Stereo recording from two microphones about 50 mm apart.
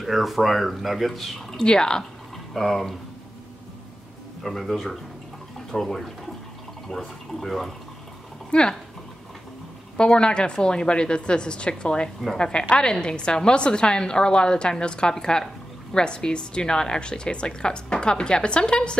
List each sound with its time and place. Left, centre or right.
0.0 s speech: centre
1.6 s a woman's voice: centre
2.3 s speech: centre
4.4 s speech: centre
8.5 s speech: centre
9.9 s a woman's voice: centre